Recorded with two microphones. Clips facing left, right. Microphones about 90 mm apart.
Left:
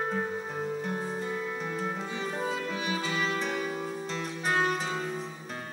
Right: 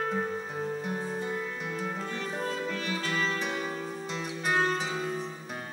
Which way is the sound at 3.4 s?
5° right (ahead or behind).